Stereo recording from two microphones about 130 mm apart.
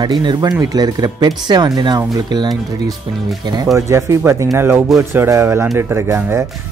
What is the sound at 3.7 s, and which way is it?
Speech, 25° right (ahead or behind).